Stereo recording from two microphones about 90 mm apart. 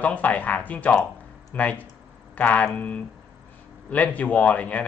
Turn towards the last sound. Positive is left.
turn(degrees=15)  # may be behind; listen again after turning